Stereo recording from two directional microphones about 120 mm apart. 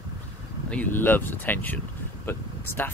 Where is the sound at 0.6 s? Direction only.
15° left (ahead or behind).